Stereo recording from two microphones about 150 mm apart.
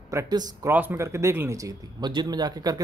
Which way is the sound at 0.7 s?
15° right (ahead or behind).